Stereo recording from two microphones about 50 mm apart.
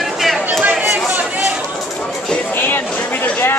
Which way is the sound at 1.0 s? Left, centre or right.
Right.